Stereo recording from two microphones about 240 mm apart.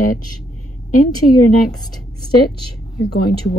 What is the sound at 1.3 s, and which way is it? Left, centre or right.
Speech, left.